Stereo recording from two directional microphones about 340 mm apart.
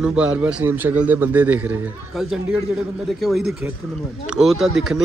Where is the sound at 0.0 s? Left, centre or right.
Centre.